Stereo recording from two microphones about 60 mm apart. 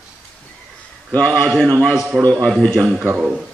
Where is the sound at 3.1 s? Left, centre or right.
Centre.